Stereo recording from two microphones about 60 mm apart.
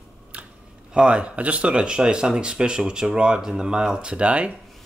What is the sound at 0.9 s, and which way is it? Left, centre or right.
Speech, centre.